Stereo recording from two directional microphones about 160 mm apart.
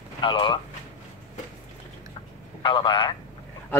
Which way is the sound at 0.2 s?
30° left (ahead or behind).